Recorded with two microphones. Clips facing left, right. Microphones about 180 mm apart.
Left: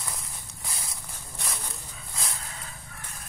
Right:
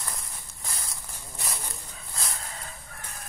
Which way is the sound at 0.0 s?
Centre (ahead or behind).